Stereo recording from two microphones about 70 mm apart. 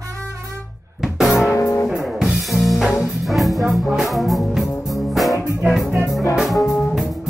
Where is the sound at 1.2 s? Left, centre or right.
Centre.